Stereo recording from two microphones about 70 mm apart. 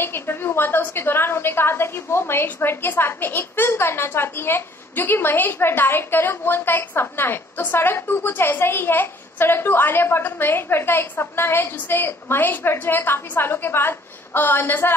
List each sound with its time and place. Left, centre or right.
0.0 s a woman's voice: left